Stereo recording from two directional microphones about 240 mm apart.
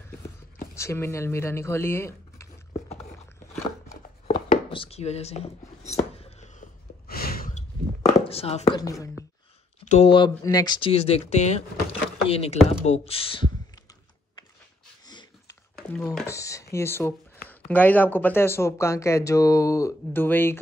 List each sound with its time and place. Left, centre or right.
0.7 s speech: centre
4.6 s a sound: left
8.1 s speech: left
9.8 s speech: left
15.0 s a sound: centre
15.7 s speech: centre